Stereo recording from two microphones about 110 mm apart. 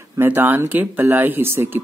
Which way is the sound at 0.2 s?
20° right (ahead or behind).